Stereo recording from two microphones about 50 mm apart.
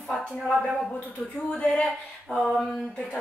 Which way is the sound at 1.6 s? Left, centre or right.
Left.